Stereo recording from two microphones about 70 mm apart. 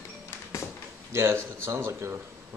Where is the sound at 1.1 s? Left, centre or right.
Right.